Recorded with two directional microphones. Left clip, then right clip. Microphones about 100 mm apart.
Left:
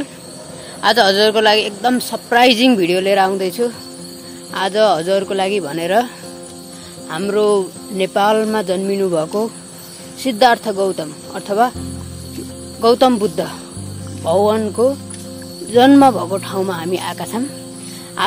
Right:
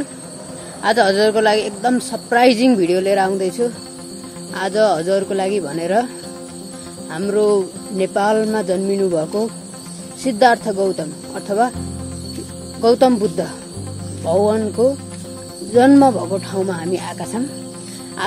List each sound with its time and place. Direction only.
0.8 s music: 15° right (ahead or behind)
7.1 s music: 15° right (ahead or behind)
12.8 s music: 10° right (ahead or behind)
15.7 s music: 10° right (ahead or behind)
16.6 s speech: 5° right (ahead or behind)